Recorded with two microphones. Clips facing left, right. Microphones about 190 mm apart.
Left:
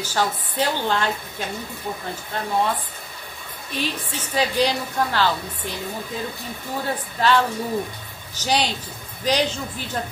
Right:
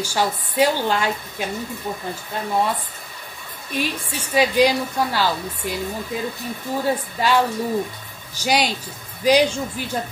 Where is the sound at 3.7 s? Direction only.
10° right (ahead or behind).